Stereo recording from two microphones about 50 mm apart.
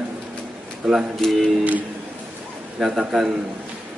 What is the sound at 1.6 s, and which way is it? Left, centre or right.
Speech, right.